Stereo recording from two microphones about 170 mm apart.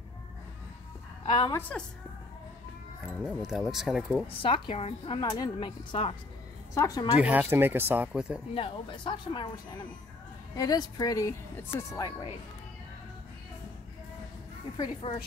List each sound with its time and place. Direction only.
1.2 s a woman's voice: 30° left (ahead or behind)
1.7 s a woman's voice: 5° left (ahead or behind)
3.3 s speech: centre (ahead or behind)
4.4 s speech: 30° left (ahead or behind)
6.7 s speech: 20° left (ahead or behind)
7.2 s speech: 10° right (ahead or behind)
8.5 s speech: 30° left (ahead or behind)
15.0 s speech: 30° left (ahead or behind)